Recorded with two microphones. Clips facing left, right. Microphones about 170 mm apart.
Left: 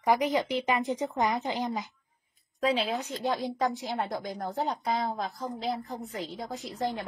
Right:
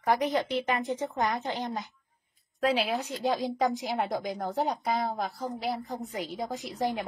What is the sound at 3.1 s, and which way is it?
A woman's voice, 15° right (ahead or behind).